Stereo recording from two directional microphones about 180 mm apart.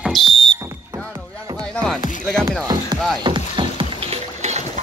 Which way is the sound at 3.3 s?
25° right (ahead or behind).